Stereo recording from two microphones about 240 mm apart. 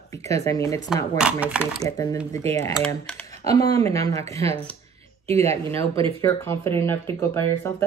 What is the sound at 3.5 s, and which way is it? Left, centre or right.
Speech, centre.